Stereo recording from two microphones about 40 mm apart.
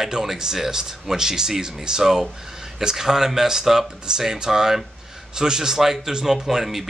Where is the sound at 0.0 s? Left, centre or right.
Centre.